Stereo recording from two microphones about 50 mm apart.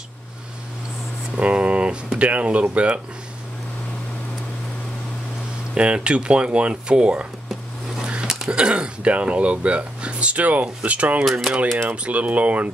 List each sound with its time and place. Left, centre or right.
1.3 s speech: right
5.8 s speech: right